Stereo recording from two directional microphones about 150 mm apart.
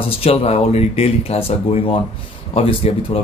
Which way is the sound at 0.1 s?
40° left (ahead or behind).